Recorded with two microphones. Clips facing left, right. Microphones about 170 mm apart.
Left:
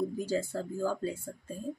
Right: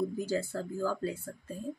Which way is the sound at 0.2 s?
15° left (ahead or behind).